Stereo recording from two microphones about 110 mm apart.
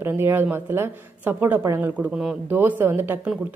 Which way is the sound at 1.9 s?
10° right (ahead or behind).